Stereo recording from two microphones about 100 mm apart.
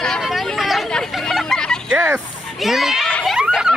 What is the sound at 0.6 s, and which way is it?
Hubbub, centre (ahead or behind).